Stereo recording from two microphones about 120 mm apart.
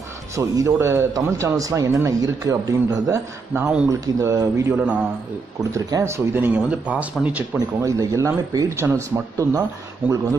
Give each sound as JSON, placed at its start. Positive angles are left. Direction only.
{"t": 0.4, "sound": "a man's voice", "side_deg": -25}
{"t": 3.6, "sound": "speech", "side_deg": -10}
{"t": 3.9, "sound": "a man's voice", "side_deg": -25}
{"t": 4.7, "sound": "speech", "side_deg": -10}
{"t": 5.6, "sound": "a man's voice", "side_deg": -30}
{"t": 7.5, "sound": "a man's voice", "side_deg": -25}
{"t": 10.0, "sound": "speech", "side_deg": -15}